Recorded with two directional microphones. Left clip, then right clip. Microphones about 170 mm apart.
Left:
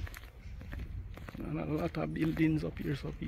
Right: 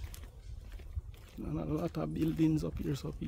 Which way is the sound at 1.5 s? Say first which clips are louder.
Left 1 dB; 25° right (ahead or behind).